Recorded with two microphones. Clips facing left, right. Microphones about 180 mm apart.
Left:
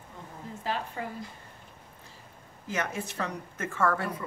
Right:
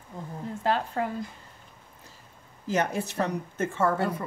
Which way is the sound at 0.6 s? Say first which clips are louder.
Right 7 dB; 70° right (ahead or behind).